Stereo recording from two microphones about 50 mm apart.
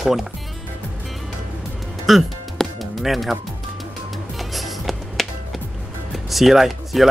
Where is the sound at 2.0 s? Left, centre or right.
Centre.